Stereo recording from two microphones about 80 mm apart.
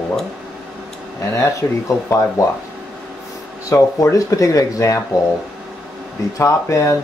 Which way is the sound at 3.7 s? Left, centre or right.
Left.